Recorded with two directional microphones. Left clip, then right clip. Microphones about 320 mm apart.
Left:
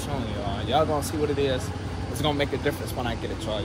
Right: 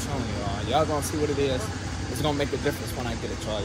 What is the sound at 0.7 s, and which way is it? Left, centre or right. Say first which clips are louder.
Speech: left 1 dB; centre.